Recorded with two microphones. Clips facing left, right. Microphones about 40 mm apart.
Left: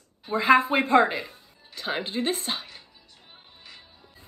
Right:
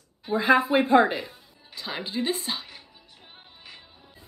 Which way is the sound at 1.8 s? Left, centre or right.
Left.